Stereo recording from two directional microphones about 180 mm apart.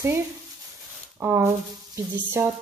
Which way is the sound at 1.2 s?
15° right (ahead or behind).